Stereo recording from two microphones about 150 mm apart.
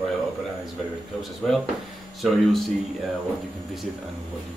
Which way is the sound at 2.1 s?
Centre (ahead or behind).